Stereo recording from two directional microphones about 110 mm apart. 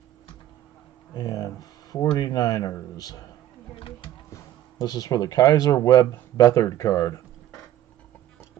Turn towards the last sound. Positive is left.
turn(degrees=30)  # may be behind; listen again after turning